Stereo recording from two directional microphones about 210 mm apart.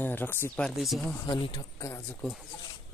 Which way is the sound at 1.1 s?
20° left (ahead or behind).